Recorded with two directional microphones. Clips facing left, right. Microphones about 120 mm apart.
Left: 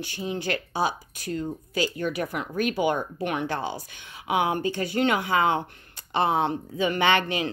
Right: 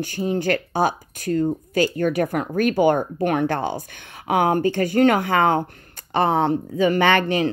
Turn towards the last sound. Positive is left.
turn(degrees=-45)  # may be behind; listen again after turning